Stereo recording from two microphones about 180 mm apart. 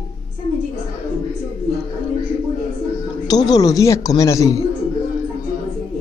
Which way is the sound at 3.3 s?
20° left (ahead or behind).